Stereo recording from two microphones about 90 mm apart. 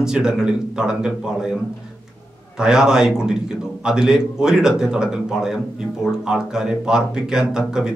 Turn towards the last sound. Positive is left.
turn(degrees=-5)  # may be behind; listen again after turning